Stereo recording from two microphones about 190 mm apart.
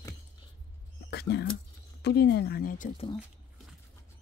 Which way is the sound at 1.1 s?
60° left (ahead or behind).